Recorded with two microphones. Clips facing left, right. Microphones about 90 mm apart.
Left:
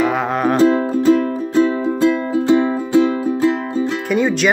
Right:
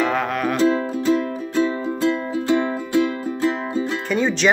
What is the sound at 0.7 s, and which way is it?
Music, 50° left (ahead or behind).